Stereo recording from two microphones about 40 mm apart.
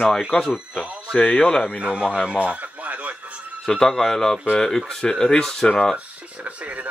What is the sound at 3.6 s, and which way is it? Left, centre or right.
Speech, centre.